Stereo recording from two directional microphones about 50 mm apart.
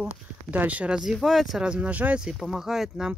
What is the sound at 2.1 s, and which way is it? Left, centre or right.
Speech, centre.